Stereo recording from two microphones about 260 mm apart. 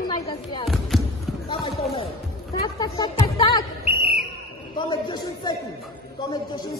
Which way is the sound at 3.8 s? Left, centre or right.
Right.